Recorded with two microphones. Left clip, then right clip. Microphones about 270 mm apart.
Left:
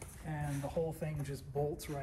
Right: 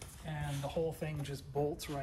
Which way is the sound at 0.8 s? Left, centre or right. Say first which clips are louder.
Right 1 dB; centre.